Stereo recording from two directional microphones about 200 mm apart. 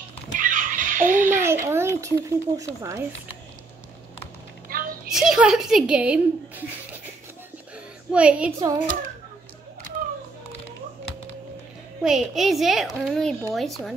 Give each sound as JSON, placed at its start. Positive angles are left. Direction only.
{"t": 0.4, "sound": "a sound", "side_deg": -40}
{"t": 1.4, "sound": "speech", "side_deg": -15}
{"t": 4.7, "sound": "a sound", "side_deg": -45}
{"t": 5.1, "sound": "a woman's voice", "side_deg": 0}
{"t": 8.1, "sound": "a child's voice", "side_deg": -5}
{"t": 8.5, "sound": "a child's voice", "side_deg": -15}
{"t": 12.0, "sound": "a child's voice", "side_deg": 0}